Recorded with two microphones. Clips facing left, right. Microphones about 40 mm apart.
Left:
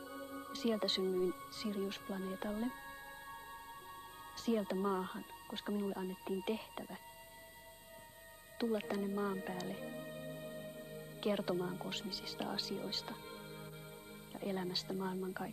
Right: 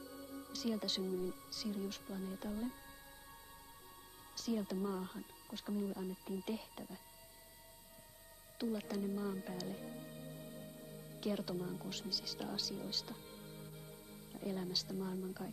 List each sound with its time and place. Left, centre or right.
0.0 s speech: left
4.4 s speech: left
8.5 s speech: left